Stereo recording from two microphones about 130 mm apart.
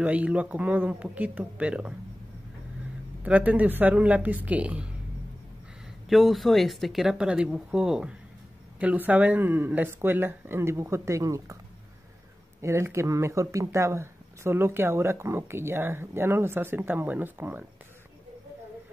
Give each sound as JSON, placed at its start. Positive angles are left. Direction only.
{"t": 0.0, "sound": "speech", "side_deg": -10}
{"t": 3.3, "sound": "speech", "side_deg": -10}
{"t": 6.0, "sound": "speech", "side_deg": 0}
{"t": 12.6, "sound": "speech", "side_deg": -20}